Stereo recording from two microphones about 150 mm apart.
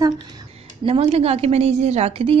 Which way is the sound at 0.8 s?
40° right (ahead or behind).